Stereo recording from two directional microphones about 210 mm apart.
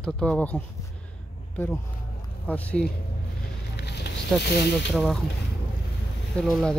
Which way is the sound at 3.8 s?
55° left (ahead or behind).